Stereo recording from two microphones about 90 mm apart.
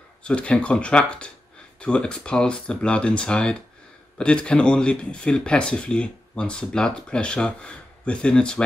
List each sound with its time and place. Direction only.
0.2 s speech: 10° left (ahead or behind)